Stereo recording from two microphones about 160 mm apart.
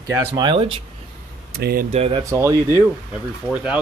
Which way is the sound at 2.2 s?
20° right (ahead or behind).